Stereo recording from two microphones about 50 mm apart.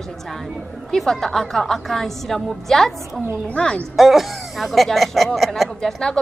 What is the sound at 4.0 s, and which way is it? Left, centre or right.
A man's voice, centre.